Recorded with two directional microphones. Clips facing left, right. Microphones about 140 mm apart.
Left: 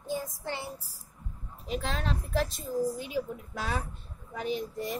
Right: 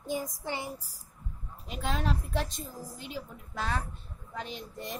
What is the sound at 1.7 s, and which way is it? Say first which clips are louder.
Speech: even; centre (ahead or behind).